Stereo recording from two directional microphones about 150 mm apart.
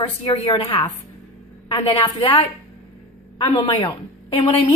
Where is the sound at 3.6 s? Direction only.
30° left (ahead or behind).